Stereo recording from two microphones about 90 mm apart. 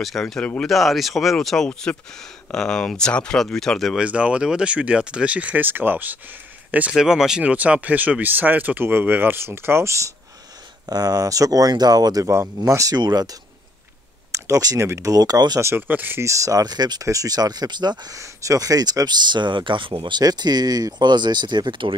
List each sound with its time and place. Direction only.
0.0 s speech: 5° left (ahead or behind)
3.9 s speech: 10° right (ahead or behind); by 10.0 s 30° right (ahead or behind)
10.9 s speech: 45° right (ahead or behind)
12.9 s speech: 50° right (ahead or behind)
15.6 s speech: 25° right (ahead or behind)
16.3 s speech: 35° right (ahead or behind); by 18.1 s 55° right (ahead or behind)
18.1 s speech: 40° right (ahead or behind); by 21.9 s 60° right (ahead or behind)